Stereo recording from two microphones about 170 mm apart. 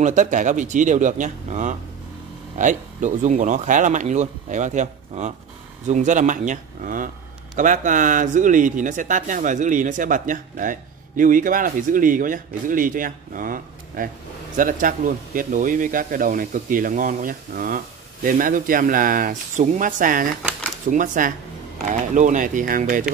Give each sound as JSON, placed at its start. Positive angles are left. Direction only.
{"t": 0.0, "sound": "speech", "side_deg": -45}